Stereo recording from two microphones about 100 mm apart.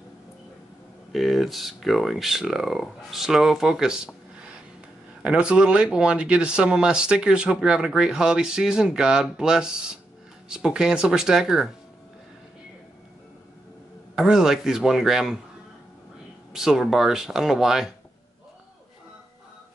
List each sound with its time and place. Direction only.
1.1 s speech: centre (ahead or behind)
14.1 s speech: 5° right (ahead or behind)
16.5 s speech: 5° right (ahead or behind)